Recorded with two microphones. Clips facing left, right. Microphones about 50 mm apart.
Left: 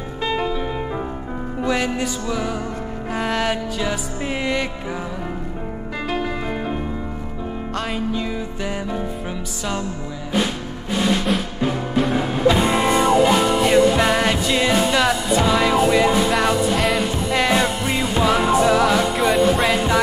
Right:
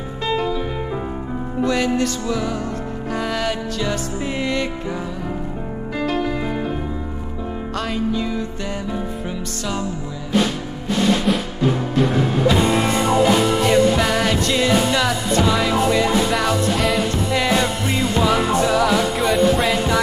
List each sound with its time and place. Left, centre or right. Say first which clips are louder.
0.2 s music: right 1 dB; centre
1.6 s music: right 3 dB; centre
6.0 s music: right 2 dB; centre
7.7 s music: right 2 dB; centre
12.0 s music: even; centre